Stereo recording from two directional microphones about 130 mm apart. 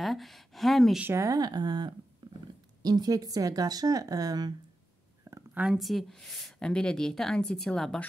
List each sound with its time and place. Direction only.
0.0 s speech: centre (ahead or behind)
1.0 s speech: 20° right (ahead or behind)
2.2 s a sound: 35° right (ahead or behind)
2.8 s speech: 30° right (ahead or behind)
5.2 s a sound: 20° right (ahead or behind)
5.6 s speech: 5° right (ahead or behind)